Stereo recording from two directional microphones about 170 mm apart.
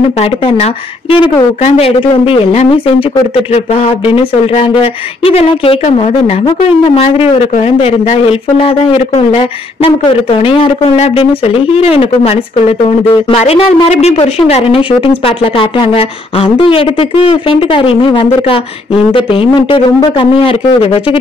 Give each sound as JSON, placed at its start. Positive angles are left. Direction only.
{"t": 0.2, "sound": "a woman's voice", "side_deg": 35}